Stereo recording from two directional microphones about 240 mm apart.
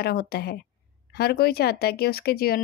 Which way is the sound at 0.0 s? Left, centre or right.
Left.